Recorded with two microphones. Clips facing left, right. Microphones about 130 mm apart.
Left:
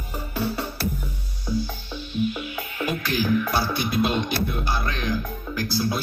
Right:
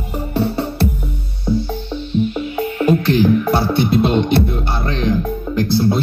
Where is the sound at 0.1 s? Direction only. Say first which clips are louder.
Right 8 dB; 30° right (ahead or behind).